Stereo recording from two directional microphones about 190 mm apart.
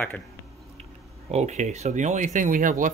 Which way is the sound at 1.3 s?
35° right (ahead or behind).